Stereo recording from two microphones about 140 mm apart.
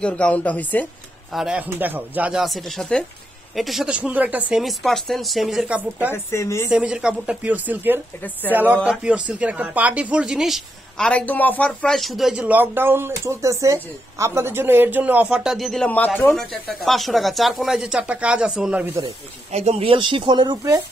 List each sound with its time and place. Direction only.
0.0 s a woman's voice: 10° left (ahead or behind)
1.3 s speech: 5° right (ahead or behind)
6.1 s speech: 20° left (ahead or behind)
6.7 s speech: 5° right (ahead or behind)
15.9 s a woman's voice: 10° left (ahead or behind)
16.3 s speech: centre (ahead or behind)
19.0 s speech: 50° right (ahead or behind); by 20.7 s 30° right (ahead or behind)